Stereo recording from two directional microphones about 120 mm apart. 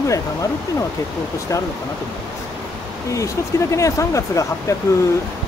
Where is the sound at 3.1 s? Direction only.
25° left (ahead or behind).